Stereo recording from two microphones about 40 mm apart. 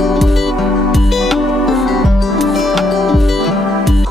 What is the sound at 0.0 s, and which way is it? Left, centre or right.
Music, centre.